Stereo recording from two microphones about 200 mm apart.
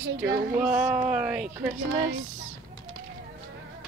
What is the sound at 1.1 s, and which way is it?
Speech, 5° right (ahead or behind).